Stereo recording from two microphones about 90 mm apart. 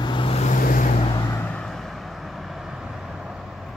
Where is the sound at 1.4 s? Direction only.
15° left (ahead or behind).